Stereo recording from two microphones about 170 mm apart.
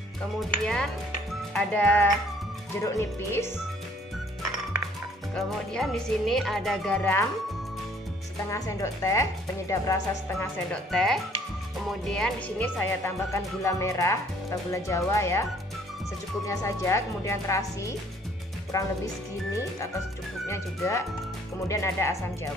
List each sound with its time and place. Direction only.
0.4 s speech: 5° left (ahead or behind)
5.3 s speech: 5° left (ahead or behind)
8.5 s speech: 20° left (ahead or behind)
10.4 s speech: 5° left (ahead or behind)
16.4 s speech: 15° left (ahead or behind)
20.4 s speech: 15° left (ahead or behind)